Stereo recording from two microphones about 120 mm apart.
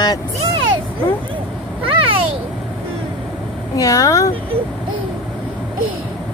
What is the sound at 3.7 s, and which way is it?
Speech, 30° left (ahead or behind).